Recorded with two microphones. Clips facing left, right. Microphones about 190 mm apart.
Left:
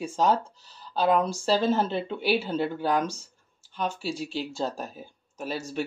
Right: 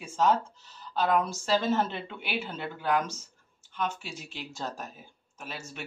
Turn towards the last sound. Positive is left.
turn(degrees=35)  # may be behind; listen again after turning